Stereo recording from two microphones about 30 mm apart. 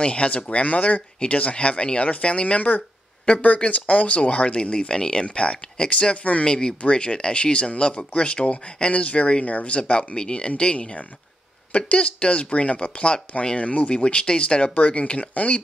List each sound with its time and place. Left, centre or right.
0.0 s speech: left
0.4 s speech: left
3.4 s speech: left
6.4 s speech: left
9.8 s speech: left
13.9 s speech: left